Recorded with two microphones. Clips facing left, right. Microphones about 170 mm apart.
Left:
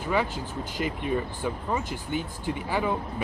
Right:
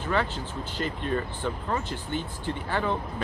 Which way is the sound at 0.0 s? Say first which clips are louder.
Left 1 dB; 10° left (ahead or behind).